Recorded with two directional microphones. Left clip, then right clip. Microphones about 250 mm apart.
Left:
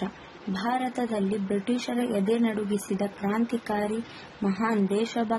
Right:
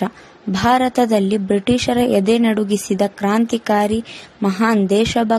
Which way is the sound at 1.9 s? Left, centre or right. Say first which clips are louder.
Right 11 dB; right.